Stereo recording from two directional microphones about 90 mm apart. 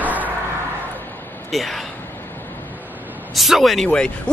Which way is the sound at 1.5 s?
Centre (ahead or behind).